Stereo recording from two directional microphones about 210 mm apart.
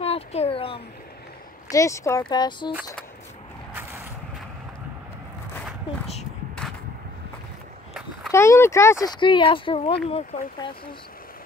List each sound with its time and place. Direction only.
0.0 s a sound: 30° left (ahead or behind)
1.7 s speech: 15° left (ahead or behind)
8.3 s speech: 15° left (ahead or behind)